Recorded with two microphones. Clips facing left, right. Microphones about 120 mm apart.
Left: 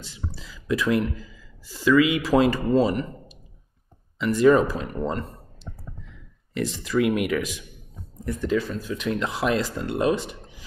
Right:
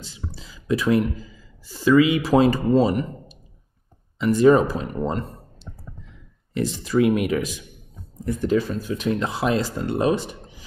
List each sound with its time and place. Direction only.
0.0 s a sound: 25° right (ahead or behind)
1.1 s speech: 30° right (ahead or behind)
4.2 s speech: 30° right (ahead or behind)
6.5 s speech: 30° right (ahead or behind)